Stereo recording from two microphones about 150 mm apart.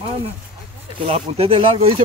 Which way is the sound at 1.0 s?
40° right (ahead or behind).